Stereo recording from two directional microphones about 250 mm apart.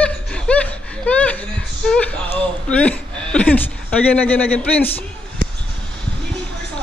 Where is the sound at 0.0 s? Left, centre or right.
Centre.